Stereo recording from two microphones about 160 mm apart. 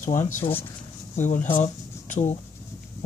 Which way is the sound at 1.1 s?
50° left (ahead or behind).